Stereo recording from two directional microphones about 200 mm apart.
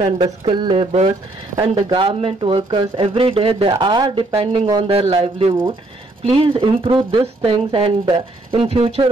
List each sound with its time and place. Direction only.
0.0 s speech: 25° right (ahead or behind)